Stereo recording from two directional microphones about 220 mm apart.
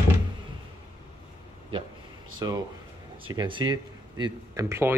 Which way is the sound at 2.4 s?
15° right (ahead or behind).